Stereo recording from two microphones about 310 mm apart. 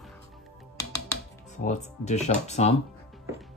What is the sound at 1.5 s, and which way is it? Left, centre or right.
Speech, left.